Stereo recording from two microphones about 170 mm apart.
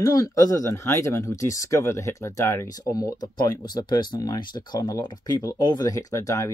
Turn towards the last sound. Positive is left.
turn(degrees=20)  # may be behind; listen again after turning